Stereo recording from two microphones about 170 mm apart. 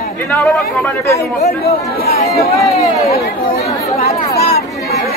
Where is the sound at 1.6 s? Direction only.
65° left (ahead or behind).